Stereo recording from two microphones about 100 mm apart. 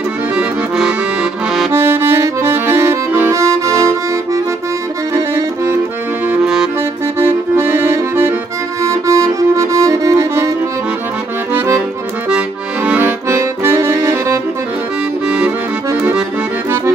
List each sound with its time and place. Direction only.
0.4 s accordion: 10° right (ahead or behind)
1.7 s accordion: 25° right (ahead or behind)
6.4 s music: 5° right (ahead or behind)
7.2 s accordion: 25° right (ahead or behind)
8.8 s music: 30° right (ahead or behind)
11.5 s accordion: 30° right (ahead or behind)
12.3 s accordion: 10° right (ahead or behind)
13.3 s accordion: 25° right (ahead or behind)
15.2 s accordion: 10° right (ahead or behind)